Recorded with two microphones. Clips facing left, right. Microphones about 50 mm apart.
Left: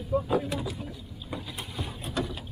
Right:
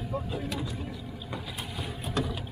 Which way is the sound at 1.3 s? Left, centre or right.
Centre.